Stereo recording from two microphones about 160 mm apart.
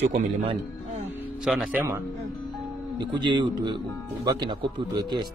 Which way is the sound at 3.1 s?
30° right (ahead or behind).